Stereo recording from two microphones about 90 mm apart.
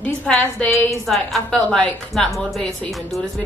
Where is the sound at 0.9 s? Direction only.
Centre (ahead or behind).